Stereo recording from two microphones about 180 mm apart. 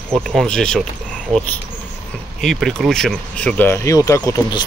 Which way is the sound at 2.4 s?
Centre (ahead or behind).